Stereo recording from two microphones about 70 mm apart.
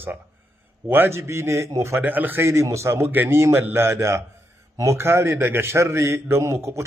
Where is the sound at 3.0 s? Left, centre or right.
Right.